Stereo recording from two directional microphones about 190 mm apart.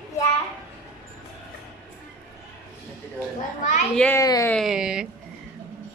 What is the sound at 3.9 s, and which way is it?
Speech, 5° left (ahead or behind).